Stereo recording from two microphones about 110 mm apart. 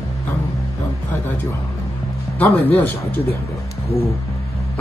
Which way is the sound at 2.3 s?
15° left (ahead or behind).